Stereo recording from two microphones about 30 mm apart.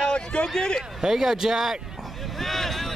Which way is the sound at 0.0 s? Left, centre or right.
Left.